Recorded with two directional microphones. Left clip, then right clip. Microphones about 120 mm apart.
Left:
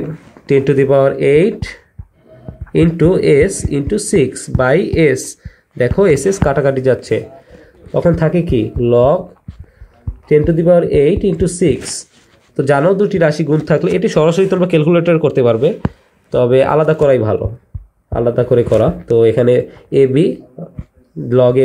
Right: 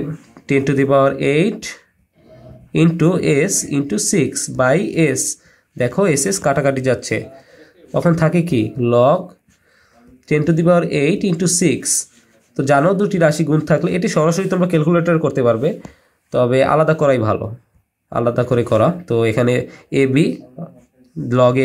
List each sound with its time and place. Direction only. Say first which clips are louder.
0.5 s speech: left 4 dB; 35° left (ahead or behind)
3.0 s speech: left 8 dB; 35° left (ahead or behind)
7.9 s speech: left 3 dB; 20° left (ahead or behind)
10.2 s speech: left 5 dB; 25° left (ahead or behind)
12.5 s speech: left 3 dB; 35° left (ahead or behind)
13.7 s speech: left 4 dB; 40° left (ahead or behind)